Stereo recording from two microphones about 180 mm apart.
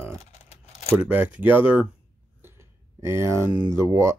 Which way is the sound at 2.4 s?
15° right (ahead or behind).